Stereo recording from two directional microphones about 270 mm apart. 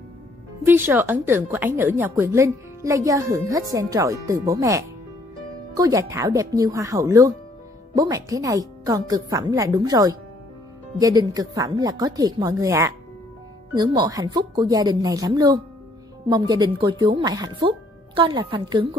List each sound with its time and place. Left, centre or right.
0.7 s speech: centre